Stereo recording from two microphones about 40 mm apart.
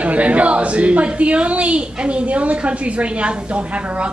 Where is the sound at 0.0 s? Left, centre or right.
Right.